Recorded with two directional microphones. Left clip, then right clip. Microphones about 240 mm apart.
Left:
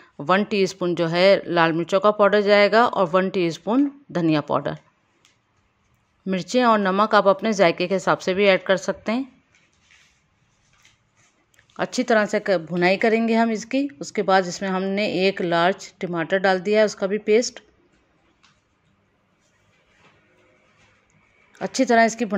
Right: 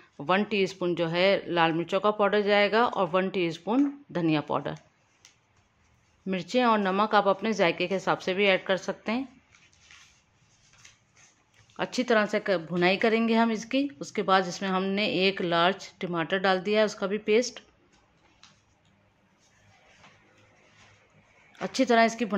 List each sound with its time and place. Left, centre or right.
0.0 s speech: left
6.2 s speech: left
11.7 s a woman's voice: left
21.5 s speech: centre